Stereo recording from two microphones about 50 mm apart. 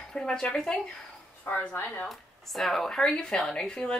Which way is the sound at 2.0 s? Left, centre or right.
Centre.